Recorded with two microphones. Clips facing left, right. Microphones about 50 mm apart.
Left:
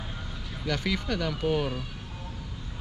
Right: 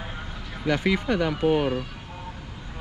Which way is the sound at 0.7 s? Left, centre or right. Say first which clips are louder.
Right 6 dB; right.